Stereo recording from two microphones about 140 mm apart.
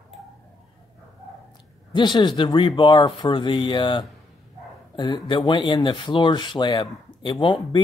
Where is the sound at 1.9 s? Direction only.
35° left (ahead or behind).